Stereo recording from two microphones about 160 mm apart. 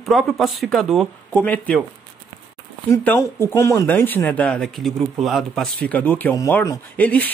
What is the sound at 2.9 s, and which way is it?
Speech, 10° left (ahead or behind).